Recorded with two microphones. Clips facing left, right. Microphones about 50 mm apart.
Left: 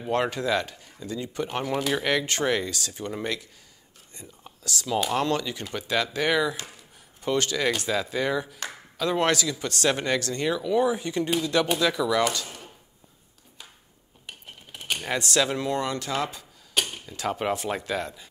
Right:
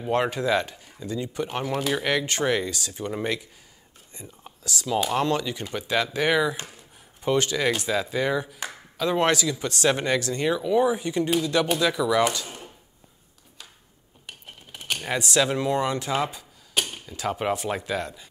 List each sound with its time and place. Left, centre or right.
0.0 s speech: centre
12.4 s a sound: right
14.2 s typing: centre
16.9 s speech: centre